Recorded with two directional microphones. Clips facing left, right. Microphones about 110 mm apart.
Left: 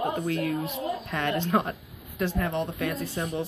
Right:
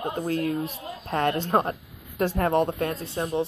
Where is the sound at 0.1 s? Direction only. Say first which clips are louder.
Right 1 dB; 35° right (ahead or behind).